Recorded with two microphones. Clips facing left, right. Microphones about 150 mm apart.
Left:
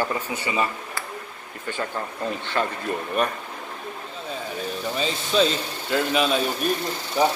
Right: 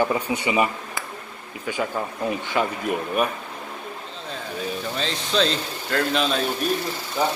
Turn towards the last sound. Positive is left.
turn(degrees=15)  # may be behind; listen again after turning